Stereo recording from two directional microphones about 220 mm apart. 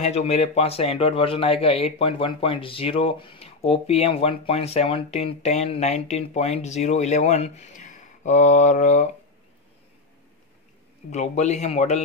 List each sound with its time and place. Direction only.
0.0 s a man's voice: 30° left (ahead or behind)
11.1 s a man's voice: 30° left (ahead or behind)